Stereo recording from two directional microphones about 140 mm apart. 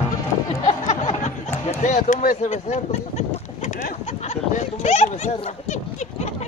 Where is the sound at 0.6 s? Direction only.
55° left (ahead or behind).